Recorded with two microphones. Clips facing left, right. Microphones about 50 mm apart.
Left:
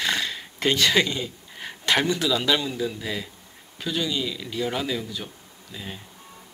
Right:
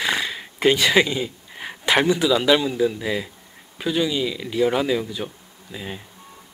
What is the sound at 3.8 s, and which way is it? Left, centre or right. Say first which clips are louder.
Speech: right 5 dB; centre.